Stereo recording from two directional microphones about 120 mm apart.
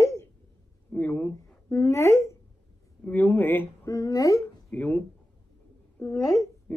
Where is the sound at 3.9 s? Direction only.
30° left (ahead or behind).